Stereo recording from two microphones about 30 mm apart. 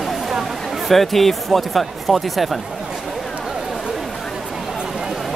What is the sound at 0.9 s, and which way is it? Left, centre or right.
Speech, centre.